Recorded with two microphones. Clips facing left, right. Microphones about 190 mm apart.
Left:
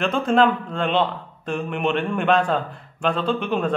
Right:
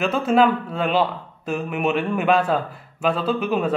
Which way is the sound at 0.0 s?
5° right (ahead or behind).